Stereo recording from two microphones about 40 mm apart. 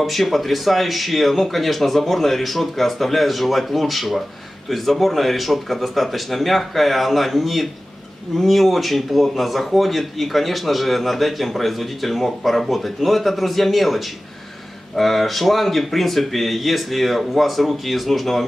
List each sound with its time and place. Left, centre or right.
0.0 s speech: centre